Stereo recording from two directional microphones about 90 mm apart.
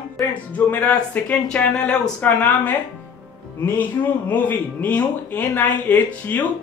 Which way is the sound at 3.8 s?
20° left (ahead or behind).